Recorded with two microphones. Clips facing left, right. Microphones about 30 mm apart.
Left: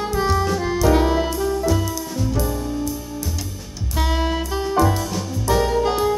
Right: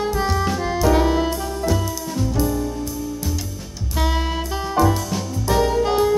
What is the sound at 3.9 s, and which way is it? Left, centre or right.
Music, centre.